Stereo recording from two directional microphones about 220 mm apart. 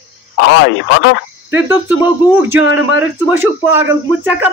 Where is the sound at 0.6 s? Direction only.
55° left (ahead or behind).